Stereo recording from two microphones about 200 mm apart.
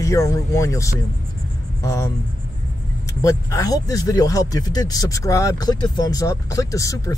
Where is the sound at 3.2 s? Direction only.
15° left (ahead or behind).